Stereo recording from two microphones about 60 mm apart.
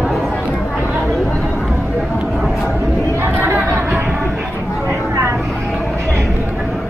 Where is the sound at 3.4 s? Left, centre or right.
Right.